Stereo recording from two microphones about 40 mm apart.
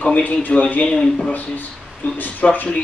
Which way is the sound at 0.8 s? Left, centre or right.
Centre.